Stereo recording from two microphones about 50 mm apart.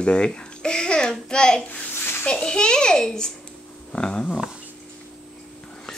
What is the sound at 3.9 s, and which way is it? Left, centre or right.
Speech, left.